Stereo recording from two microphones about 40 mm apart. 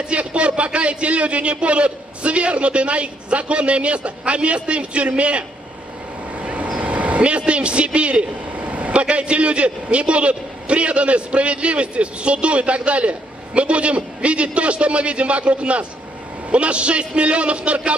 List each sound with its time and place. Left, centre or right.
0.1 s a man's voice: right
6.4 s vehicle: right
9.0 s a man's voice: right